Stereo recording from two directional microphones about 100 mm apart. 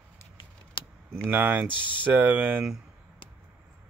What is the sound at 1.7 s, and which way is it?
Speech, 55° left (ahead or behind).